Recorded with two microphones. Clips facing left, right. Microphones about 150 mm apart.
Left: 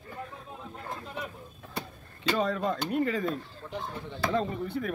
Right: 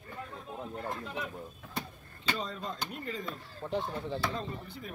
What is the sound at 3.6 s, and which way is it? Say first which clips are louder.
Speech: right 9 dB; 25° right (ahead or behind).